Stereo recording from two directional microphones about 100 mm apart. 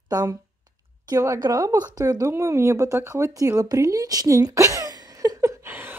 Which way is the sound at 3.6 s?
35° right (ahead or behind).